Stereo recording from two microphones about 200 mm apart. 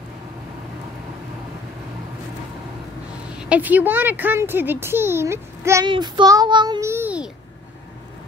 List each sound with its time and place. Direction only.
3.3 s a child's voice: 5° right (ahead or behind)